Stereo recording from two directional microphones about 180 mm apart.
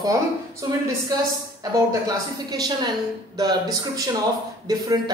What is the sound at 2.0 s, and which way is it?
A woman's voice, 20° right (ahead or behind).